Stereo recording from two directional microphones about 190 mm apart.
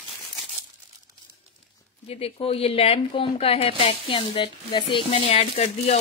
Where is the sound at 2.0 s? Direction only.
30° left (ahead or behind).